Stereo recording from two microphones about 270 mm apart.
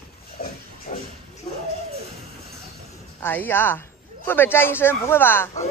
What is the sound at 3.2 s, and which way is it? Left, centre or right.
Speech, centre.